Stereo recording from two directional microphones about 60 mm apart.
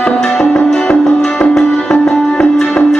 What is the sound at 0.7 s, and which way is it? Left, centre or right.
Music, centre.